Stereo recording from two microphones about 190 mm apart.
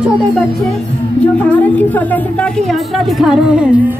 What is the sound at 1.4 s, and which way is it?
Speech, 5° left (ahead or behind).